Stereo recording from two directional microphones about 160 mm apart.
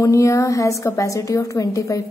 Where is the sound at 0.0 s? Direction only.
20° left (ahead or behind).